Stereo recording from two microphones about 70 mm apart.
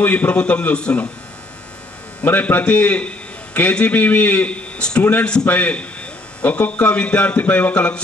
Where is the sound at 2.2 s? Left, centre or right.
Left.